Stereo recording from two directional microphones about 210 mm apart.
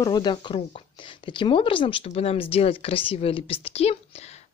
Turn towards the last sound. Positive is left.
turn(degrees=30)  # may be behind; listen again after turning